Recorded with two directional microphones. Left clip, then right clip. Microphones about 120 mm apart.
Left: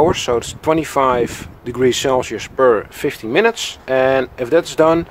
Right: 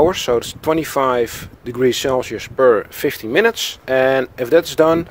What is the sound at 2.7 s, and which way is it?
Speech, 25° right (ahead or behind).